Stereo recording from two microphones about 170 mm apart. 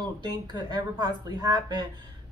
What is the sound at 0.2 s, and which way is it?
A woman's voice, 25° right (ahead or behind).